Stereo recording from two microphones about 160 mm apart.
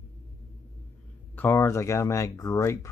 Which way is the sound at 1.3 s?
15° left (ahead or behind).